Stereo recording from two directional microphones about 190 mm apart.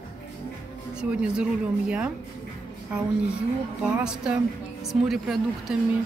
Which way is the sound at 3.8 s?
5° right (ahead or behind).